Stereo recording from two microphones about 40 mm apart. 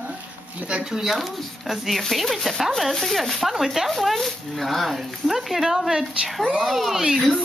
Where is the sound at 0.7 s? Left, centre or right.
Right.